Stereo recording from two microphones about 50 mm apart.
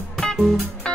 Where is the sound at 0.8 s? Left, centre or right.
Centre.